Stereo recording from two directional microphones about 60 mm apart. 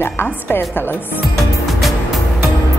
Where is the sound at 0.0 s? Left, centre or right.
Left.